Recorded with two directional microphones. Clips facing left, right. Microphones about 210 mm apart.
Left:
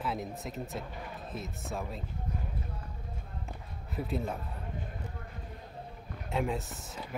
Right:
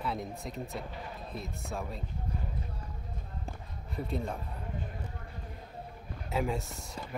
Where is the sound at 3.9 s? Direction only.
5° left (ahead or behind).